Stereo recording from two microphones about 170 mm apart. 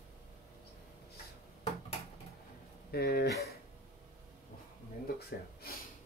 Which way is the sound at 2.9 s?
65° left (ahead or behind).